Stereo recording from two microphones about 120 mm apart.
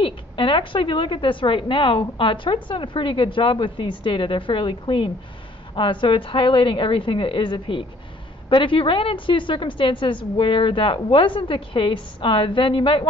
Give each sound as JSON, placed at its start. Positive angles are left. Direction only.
{"t": 0.0, "sound": "a woman's voice", "side_deg": 45}